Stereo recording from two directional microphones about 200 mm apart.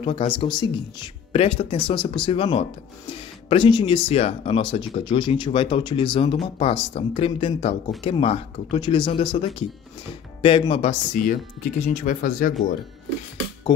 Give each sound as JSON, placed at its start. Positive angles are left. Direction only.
{"t": 0.0, "sound": "speech", "side_deg": 25}
{"t": 10.7, "sound": "speech", "side_deg": 30}
{"t": 11.1, "sound": "speech", "side_deg": 40}